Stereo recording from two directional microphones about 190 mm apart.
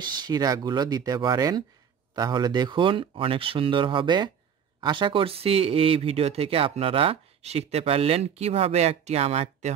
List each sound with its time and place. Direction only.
0.2 s speech: 20° right (ahead or behind)